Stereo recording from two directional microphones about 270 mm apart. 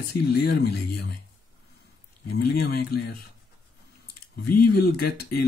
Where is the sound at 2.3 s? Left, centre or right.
Left.